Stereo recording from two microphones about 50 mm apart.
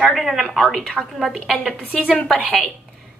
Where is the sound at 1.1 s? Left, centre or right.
Centre.